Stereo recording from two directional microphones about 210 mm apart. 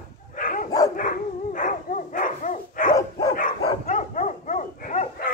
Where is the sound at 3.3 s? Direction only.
40° left (ahead or behind).